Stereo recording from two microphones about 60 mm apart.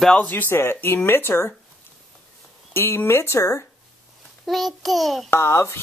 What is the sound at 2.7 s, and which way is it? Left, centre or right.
Speech, left.